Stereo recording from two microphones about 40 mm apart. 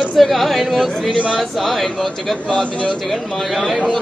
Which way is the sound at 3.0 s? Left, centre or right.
Centre.